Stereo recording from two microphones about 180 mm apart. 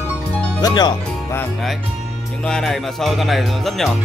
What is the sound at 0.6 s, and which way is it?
Speech, 20° left (ahead or behind).